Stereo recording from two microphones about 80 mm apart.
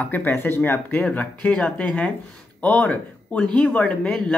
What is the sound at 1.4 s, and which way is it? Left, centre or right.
Speech, centre.